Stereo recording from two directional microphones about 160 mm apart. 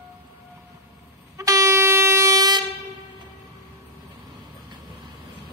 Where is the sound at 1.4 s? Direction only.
20° right (ahead or behind).